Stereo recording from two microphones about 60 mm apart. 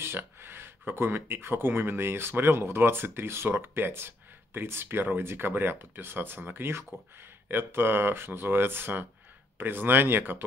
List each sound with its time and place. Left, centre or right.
0.0 s speech: right